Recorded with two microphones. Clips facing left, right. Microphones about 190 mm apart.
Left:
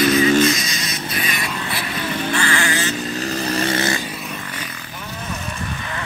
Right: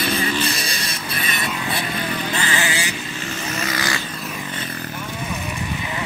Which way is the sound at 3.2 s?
35° left (ahead or behind).